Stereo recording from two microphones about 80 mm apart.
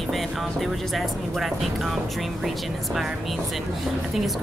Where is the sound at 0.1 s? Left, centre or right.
Centre.